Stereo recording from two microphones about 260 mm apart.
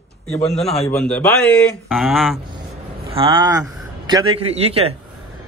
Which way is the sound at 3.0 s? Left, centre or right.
Right.